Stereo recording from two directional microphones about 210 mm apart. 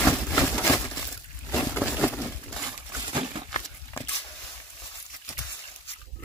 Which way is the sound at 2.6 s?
15° right (ahead or behind).